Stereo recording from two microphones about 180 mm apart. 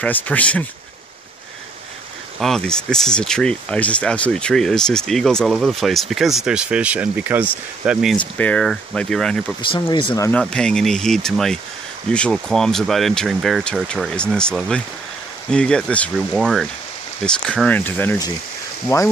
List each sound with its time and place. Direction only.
0.0 s speech: 10° left (ahead or behind)
2.4 s speech: 5° left (ahead or behind)
9.6 s speech: 25° left (ahead or behind)
10.3 s speech: 5° left (ahead or behind)